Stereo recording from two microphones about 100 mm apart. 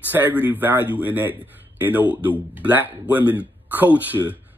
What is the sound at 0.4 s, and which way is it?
Speech, 20° right (ahead or behind).